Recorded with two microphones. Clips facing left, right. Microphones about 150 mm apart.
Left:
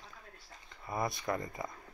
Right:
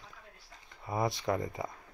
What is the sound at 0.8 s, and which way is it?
Speech, 10° right (ahead or behind).